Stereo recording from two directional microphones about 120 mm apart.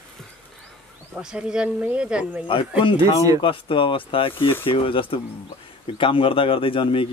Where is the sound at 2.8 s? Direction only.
50° left (ahead or behind).